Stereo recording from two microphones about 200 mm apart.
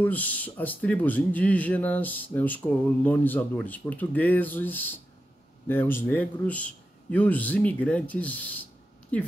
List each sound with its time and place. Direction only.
0.0 s speech: 10° left (ahead or behind)